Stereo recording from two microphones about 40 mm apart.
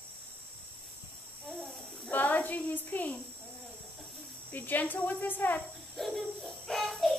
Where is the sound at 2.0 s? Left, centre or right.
Left.